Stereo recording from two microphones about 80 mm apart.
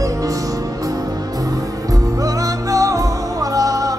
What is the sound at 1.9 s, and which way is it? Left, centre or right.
Music, right.